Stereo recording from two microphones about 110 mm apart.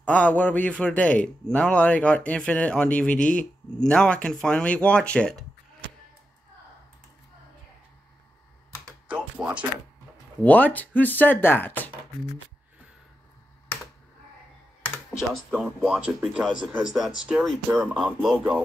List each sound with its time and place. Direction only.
0.0 s a man's voice: 15° left (ahead or behind)
9.0 s music: 10° right (ahead or behind)
10.4 s a man's voice: 15° left (ahead or behind)
15.1 s speech: 5° right (ahead or behind)